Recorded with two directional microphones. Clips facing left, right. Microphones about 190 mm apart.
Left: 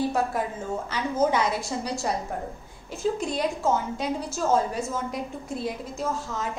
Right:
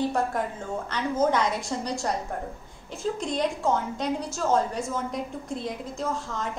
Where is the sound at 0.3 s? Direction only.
5° left (ahead or behind).